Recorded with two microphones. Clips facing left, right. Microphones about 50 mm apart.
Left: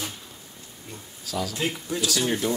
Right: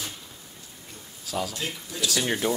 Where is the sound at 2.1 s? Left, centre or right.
Centre.